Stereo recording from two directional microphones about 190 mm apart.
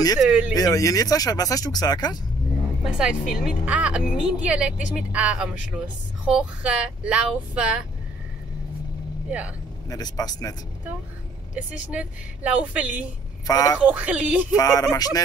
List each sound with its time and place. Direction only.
0.2 s a woman's voice: 5° right (ahead or behind)
0.6 s speech: 15° left (ahead or behind)
2.8 s a woman's voice: 5° right (ahead or behind)
9.8 s speech: 20° left (ahead or behind)
11.5 s a woman's voice: 5° right (ahead or behind)
13.5 s speech: 20° left (ahead or behind)
13.8 s a woman's voice: 5° right (ahead or behind)
14.5 s speech: 20° left (ahead or behind)